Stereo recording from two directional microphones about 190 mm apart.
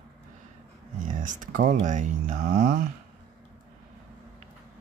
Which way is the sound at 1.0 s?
40° right (ahead or behind).